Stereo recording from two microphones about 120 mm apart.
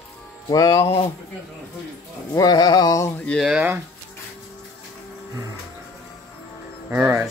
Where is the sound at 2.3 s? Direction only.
35° left (ahead or behind).